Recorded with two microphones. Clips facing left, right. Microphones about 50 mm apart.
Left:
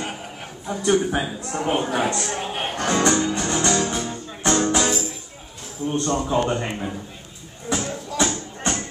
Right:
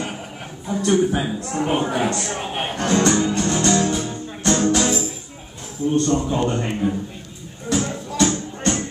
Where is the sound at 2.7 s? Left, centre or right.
Centre.